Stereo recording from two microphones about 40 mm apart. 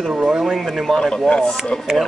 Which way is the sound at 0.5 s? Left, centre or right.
Centre.